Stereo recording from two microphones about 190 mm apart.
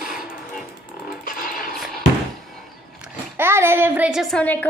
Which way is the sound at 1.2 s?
45° left (ahead or behind).